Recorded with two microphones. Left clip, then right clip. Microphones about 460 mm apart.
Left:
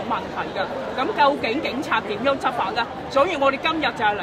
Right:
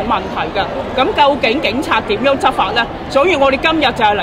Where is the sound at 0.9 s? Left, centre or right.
Right.